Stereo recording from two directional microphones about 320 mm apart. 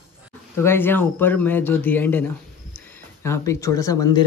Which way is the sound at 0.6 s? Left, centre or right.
Centre.